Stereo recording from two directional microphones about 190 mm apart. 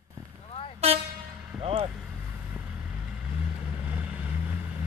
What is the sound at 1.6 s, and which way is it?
Vehicle, 30° right (ahead or behind).